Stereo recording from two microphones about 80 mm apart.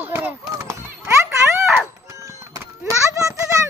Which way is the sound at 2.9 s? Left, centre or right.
Right.